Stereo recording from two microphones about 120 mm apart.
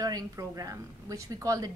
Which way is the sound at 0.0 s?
30° right (ahead or behind).